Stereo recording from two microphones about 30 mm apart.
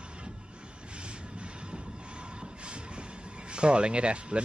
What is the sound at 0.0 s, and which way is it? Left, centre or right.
Vehicle, right.